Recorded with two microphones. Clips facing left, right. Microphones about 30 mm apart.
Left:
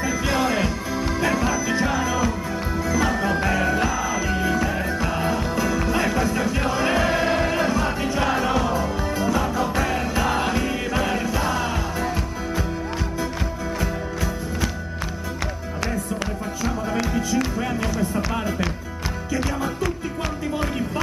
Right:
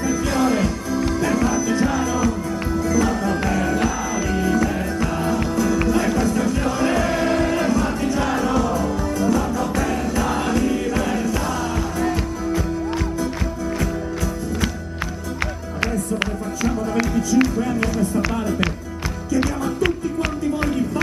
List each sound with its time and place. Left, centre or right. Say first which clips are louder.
0.0 s music: right 2 dB; centre
17.1 s music: right 5 dB; centre